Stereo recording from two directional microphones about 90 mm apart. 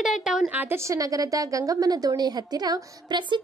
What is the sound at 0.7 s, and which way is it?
A woman's voice, 35° right (ahead or behind).